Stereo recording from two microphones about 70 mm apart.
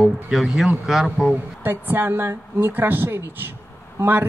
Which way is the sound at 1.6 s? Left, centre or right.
Right.